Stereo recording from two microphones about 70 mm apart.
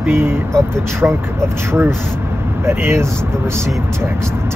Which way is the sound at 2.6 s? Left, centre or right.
Right.